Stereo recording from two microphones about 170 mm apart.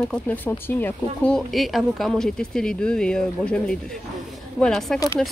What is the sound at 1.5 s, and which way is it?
A woman's voice, centre (ahead or behind).